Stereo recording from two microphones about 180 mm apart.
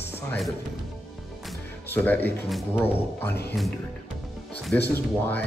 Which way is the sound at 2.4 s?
Centre (ahead or behind).